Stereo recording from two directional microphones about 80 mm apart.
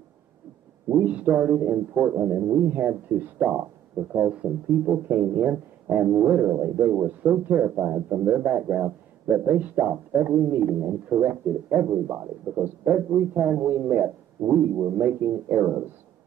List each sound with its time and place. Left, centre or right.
0.9 s a man's voice: centre
2.7 s a man's voice: right